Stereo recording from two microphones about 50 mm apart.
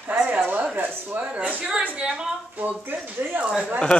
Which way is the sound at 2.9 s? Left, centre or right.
Right.